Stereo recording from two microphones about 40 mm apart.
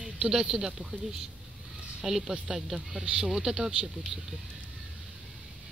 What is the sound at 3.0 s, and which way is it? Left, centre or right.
Speech, right.